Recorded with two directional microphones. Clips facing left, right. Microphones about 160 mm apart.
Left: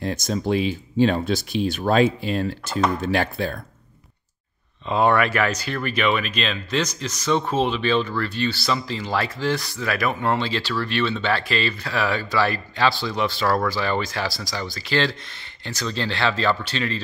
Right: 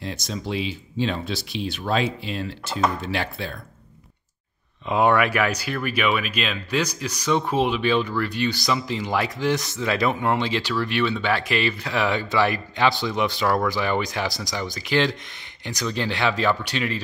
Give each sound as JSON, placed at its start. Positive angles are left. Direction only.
{"t": 0.0, "sound": "speech", "side_deg": 50}
{"t": 4.8, "sound": "speech", "side_deg": -10}